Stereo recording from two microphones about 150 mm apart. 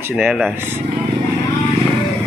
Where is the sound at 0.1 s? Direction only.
Centre (ahead or behind).